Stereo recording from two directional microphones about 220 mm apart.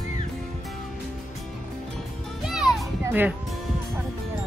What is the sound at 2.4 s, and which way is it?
Music, centre (ahead or behind).